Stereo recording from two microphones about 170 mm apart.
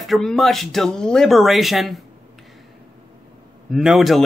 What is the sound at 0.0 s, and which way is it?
Speech, centre (ahead or behind).